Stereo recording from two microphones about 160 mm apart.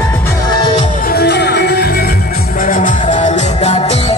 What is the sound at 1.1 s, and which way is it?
Music, 90° left.